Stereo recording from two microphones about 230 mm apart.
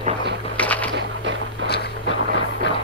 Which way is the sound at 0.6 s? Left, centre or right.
Centre.